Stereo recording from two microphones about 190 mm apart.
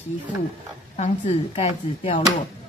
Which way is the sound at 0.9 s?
35° left (ahead or behind).